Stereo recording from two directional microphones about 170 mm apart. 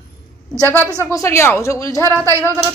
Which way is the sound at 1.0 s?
15° left (ahead or behind).